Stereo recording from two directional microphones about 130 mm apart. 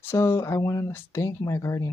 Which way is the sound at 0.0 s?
20° left (ahead or behind).